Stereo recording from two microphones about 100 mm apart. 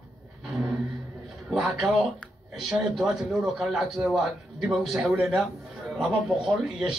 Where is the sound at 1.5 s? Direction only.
5° right (ahead or behind).